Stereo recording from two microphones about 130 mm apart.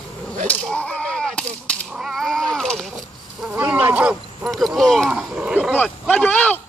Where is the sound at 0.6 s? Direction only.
10° left (ahead or behind).